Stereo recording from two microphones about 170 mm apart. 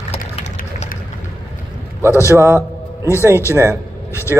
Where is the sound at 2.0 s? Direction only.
15° left (ahead or behind).